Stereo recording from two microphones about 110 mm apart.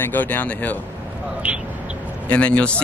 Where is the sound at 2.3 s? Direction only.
10° left (ahead or behind).